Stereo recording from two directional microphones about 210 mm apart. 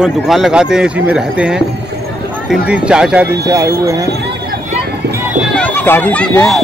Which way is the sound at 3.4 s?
15° right (ahead or behind).